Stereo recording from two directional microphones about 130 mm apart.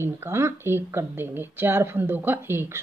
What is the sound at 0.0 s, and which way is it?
Speech, 20° right (ahead or behind).